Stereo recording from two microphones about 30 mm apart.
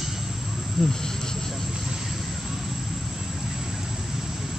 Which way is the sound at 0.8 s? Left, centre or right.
Centre.